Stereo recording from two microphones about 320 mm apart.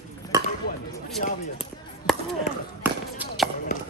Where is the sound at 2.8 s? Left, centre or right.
Centre.